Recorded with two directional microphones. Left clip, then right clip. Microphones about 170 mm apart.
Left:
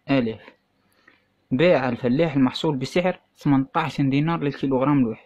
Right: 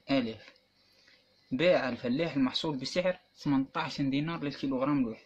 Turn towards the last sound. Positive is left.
turn(degrees=65)  # may be behind; listen again after turning